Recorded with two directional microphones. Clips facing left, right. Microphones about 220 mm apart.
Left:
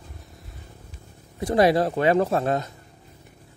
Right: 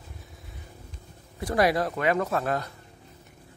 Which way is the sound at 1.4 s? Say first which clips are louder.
Left 5 dB; 25° left (ahead or behind).